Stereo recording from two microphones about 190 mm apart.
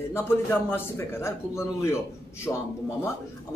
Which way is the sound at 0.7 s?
15° left (ahead or behind).